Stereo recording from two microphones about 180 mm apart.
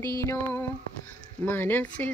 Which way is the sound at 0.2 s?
15° left (ahead or behind).